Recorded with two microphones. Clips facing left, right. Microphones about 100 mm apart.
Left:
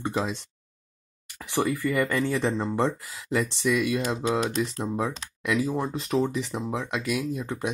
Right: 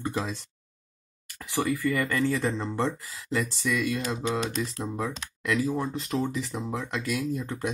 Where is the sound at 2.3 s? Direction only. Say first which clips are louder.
Left 3 dB; 15° left (ahead or behind).